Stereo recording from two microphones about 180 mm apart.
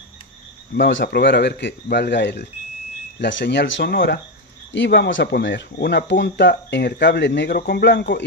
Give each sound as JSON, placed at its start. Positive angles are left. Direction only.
{"t": 0.7, "sound": "speech", "side_deg": 85}